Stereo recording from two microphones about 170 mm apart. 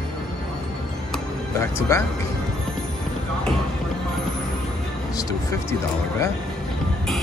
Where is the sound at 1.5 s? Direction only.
15° left (ahead or behind).